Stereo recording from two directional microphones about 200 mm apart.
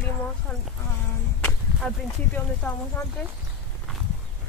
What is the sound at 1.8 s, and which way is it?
Speech, 5° left (ahead or behind).